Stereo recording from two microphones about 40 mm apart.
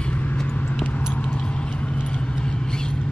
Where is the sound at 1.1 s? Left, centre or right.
Left.